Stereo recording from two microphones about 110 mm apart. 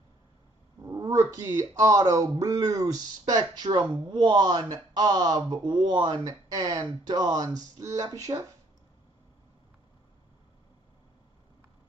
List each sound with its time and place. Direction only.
0.8 s speech: 30° right (ahead or behind)